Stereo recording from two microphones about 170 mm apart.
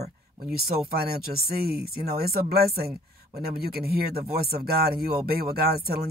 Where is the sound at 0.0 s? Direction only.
65° right (ahead or behind).